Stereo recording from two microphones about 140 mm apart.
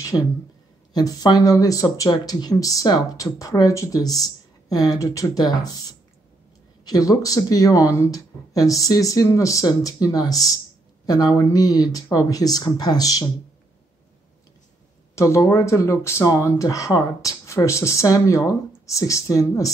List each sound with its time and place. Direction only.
0.1 s speech: 15° left (ahead or behind)
0.9 s speech: 30° left (ahead or behind)
6.8 s speech: 25° left (ahead or behind)
15.1 s speech: 20° left (ahead or behind)